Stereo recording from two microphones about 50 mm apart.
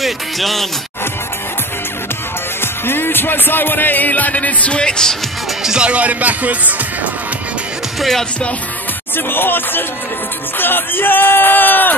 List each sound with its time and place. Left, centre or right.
0.0 s speech: centre
2.6 s speech: left; by 5.1 s centre
5.6 s speech: centre
5.9 s speech: right
8.0 s speech: centre
9.1 s speech: left